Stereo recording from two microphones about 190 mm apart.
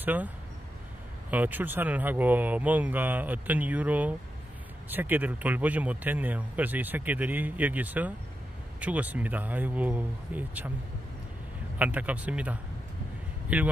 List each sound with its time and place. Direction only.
0.0 s speech: 10° right (ahead or behind)
1.3 s speech: 10° right (ahead or behind)
11.8 s speech: 10° right (ahead or behind)